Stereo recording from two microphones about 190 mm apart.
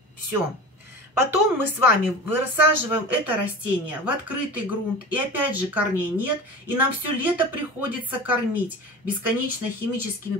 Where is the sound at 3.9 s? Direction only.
10° right (ahead or behind).